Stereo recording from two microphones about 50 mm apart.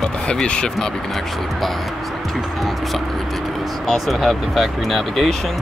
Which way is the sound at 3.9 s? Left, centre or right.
Centre.